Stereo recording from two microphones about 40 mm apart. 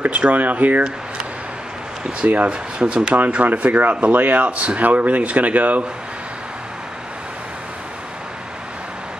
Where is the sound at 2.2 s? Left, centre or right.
Right.